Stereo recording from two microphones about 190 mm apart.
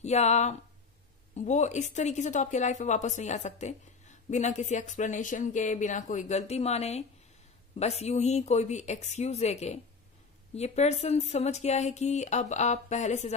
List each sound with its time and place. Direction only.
0.0 s speech: 35° left (ahead or behind)